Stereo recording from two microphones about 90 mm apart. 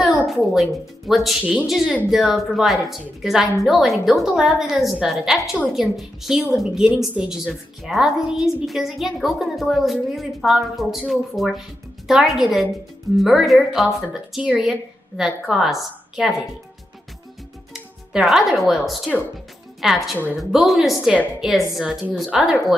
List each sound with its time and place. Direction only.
0.0 s a woman's voice: centre (ahead or behind)
1.4 s a woman's voice: 15° right (ahead or behind)
18.1 s a woman's voice: 5° right (ahead or behind)